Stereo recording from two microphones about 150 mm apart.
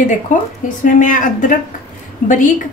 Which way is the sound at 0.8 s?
60° left (ahead or behind).